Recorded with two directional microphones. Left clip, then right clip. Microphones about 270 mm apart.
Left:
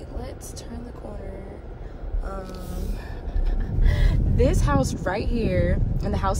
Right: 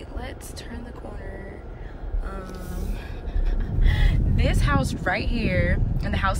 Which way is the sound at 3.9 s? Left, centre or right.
Left.